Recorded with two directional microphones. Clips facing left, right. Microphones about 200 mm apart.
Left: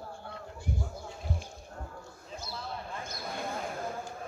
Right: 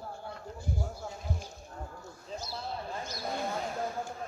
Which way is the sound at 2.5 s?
30° right (ahead or behind).